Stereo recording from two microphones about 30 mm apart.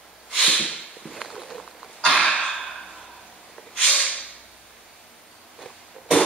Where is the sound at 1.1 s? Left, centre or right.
Centre.